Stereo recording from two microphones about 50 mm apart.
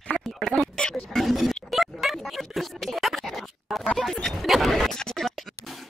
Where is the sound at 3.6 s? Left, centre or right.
Centre.